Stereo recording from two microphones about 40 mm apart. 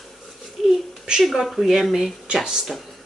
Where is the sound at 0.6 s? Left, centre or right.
Centre.